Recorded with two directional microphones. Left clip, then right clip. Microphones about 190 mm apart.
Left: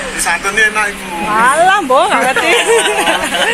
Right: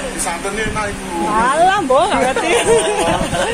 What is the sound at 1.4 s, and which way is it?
Speech, 20° left (ahead or behind).